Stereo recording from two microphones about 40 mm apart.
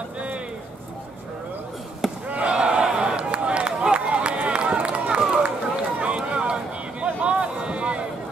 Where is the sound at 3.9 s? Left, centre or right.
Right.